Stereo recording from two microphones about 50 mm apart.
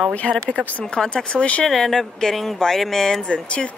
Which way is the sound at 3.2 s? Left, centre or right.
Left.